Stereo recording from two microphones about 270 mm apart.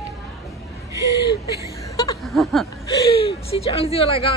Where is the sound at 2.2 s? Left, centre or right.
Centre.